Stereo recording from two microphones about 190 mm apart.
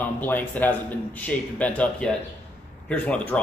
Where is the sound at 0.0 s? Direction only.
10° left (ahead or behind).